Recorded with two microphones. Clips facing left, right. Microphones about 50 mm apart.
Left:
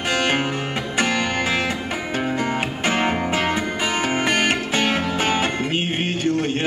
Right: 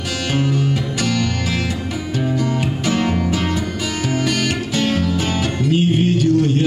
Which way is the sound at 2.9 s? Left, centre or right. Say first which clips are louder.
Right 2 dB; left.